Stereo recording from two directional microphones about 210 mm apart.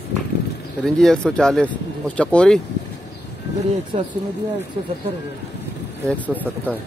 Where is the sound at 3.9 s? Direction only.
25° right (ahead or behind).